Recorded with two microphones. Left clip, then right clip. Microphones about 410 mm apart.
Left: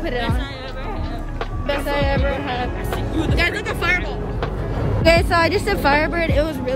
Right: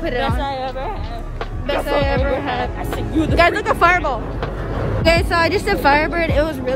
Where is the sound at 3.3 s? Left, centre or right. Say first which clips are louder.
Right 8 dB; centre.